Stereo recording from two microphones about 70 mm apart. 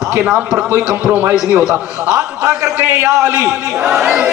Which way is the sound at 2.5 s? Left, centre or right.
Centre.